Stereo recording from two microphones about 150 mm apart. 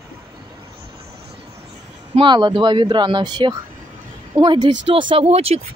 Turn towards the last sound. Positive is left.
turn(degrees=-40)  # may be behind; listen again after turning